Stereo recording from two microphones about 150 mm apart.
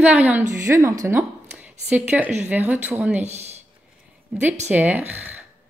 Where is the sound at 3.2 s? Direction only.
45° right (ahead or behind).